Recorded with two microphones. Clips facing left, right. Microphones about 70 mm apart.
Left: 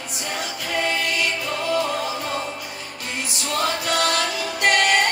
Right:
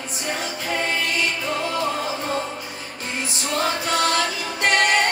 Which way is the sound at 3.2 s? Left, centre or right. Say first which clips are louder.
Even; right.